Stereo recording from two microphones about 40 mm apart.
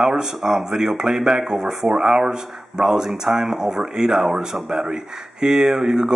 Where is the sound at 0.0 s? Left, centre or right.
Centre.